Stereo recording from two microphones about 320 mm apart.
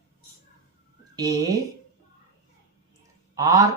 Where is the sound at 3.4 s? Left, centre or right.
Centre.